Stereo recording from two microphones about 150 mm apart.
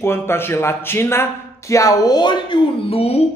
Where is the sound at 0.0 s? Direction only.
15° left (ahead or behind).